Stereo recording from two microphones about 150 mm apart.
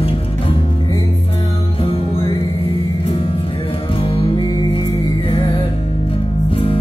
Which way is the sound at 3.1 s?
35° left (ahead or behind).